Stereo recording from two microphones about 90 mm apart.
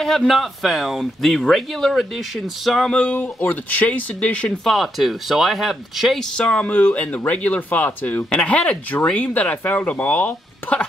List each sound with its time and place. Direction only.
0.0 s speech: 5° left (ahead or behind)
3.0 s speech: 20° left (ahead or behind)
4.5 s speech: centre (ahead or behind)
6.3 s speech: 10° left (ahead or behind)